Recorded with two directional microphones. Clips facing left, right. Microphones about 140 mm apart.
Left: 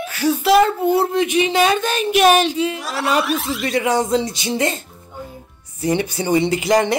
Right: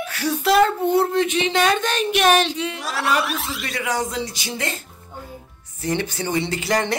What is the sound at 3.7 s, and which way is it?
Speech, 25° left (ahead or behind).